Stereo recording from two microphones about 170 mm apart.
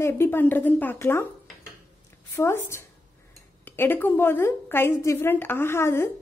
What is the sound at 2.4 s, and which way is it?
A woman's voice, 15° left (ahead or behind).